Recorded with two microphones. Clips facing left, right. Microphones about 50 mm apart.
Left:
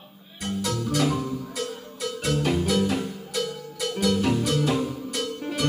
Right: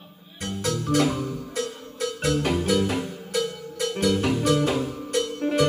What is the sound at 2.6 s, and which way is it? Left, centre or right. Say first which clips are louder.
Music: right 1 dB; centre.